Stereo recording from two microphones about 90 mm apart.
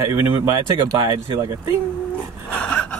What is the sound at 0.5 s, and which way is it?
Speech, 40° right (ahead or behind).